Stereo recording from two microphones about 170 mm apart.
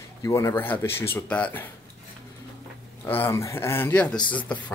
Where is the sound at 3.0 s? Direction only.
10° left (ahead or behind).